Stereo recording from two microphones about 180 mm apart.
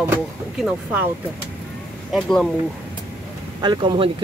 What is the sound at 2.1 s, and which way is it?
Speech, centre (ahead or behind).